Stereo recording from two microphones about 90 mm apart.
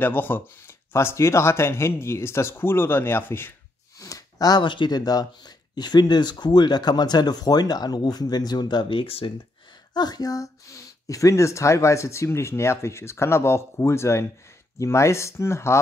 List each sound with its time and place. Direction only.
0.0 s speech: 20° left (ahead or behind)
4.0 s speech: 40° left (ahead or behind)
8.9 s speech: 85° left
9.9 s speech: 50° left (ahead or behind); by 15.8 s 30° left (ahead or behind)